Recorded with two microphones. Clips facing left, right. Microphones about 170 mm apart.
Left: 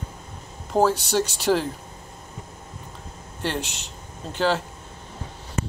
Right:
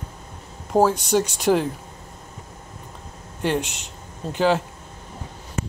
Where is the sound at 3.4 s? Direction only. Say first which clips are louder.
Right 5 dB; 5° right (ahead or behind).